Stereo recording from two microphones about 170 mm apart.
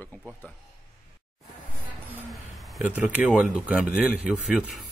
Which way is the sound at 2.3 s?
Centre (ahead or behind).